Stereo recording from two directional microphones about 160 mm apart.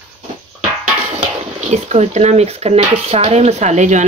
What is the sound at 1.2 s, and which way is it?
Speech, 45° right (ahead or behind).